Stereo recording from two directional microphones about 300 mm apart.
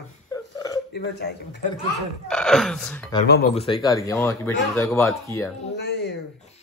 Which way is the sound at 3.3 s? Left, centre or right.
Left.